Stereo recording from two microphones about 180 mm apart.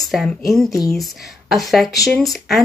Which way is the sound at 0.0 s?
Centre (ahead or behind).